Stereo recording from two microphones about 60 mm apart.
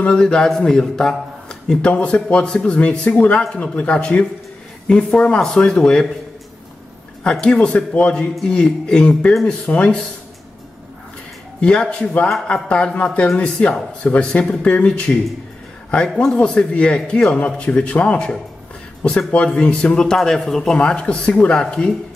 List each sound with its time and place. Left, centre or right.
0.0 s a man's voice: centre
7.2 s a man's voice: centre
11.6 s a man's voice: centre
20.2 s a man's voice: centre